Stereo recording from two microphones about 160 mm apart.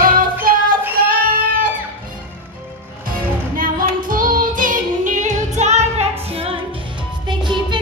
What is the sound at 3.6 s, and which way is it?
Music, 60° right (ahead or behind).